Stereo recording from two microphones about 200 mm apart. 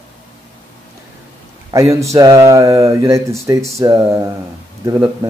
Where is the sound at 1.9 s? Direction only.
15° right (ahead or behind).